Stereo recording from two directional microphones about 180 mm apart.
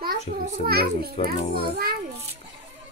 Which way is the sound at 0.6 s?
60° right (ahead or behind).